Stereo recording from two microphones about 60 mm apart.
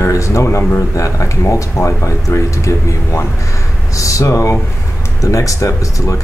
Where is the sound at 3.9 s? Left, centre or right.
Left.